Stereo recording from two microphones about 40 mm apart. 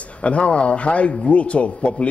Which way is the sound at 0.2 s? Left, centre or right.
Left.